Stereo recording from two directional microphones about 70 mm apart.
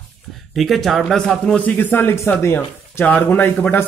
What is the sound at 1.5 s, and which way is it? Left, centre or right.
Speech, left.